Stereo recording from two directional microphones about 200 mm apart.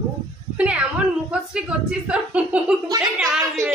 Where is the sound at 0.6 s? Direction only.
5° right (ahead or behind).